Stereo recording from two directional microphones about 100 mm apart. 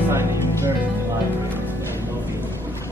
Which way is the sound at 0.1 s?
25° right (ahead or behind).